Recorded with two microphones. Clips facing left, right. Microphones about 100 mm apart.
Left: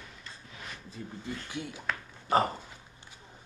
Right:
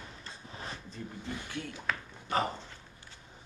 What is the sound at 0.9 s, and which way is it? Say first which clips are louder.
Speech: left 1 dB; 5° left (ahead or behind).